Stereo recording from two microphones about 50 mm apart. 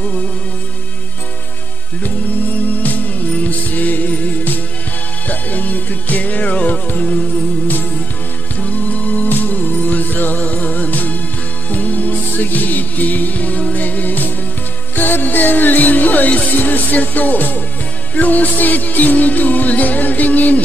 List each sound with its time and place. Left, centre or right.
2.0 s music: left
8.5 s music: left